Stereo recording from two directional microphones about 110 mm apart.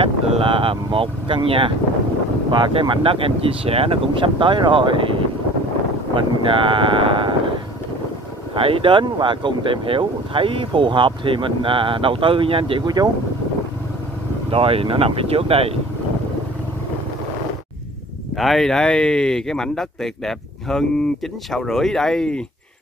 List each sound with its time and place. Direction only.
0.0 s vehicle: 55° right (ahead or behind)
0.9 s speech: 55° right (ahead or behind)
6.1 s speech: 50° right (ahead or behind)
8.5 s speech: 55° right (ahead or behind)
12.8 s speech: 40° right (ahead or behind)
14.5 s speech: 60° right (ahead or behind)
18.4 s speech: centre (ahead or behind)